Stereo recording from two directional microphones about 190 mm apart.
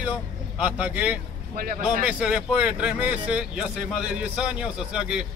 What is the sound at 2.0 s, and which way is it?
A man's voice, 5° right (ahead or behind).